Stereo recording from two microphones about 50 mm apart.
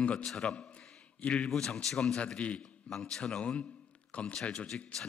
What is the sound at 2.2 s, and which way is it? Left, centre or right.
A man's voice, left.